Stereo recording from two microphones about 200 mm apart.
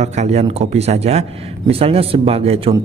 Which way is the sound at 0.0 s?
35° right (ahead or behind).